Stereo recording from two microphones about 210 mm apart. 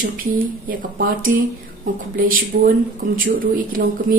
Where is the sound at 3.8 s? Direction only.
45° right (ahead or behind).